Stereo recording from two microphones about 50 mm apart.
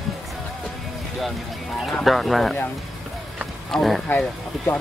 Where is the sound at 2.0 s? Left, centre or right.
Centre.